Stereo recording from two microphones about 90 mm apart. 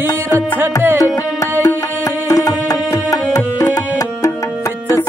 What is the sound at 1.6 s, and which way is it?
Music, 40° left (ahead or behind).